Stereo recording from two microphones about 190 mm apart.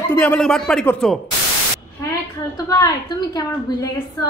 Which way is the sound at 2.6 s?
20° left (ahead or behind).